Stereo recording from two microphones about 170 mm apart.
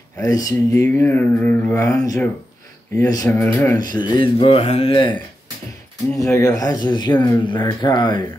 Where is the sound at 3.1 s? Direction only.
20° left (ahead or behind).